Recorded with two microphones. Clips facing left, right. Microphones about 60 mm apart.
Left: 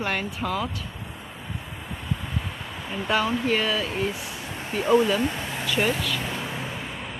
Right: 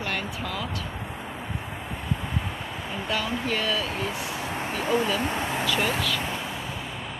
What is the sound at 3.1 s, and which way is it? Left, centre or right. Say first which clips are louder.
Speech: left 5 dB; left.